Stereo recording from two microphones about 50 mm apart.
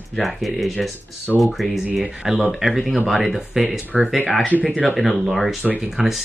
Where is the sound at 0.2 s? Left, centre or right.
Centre.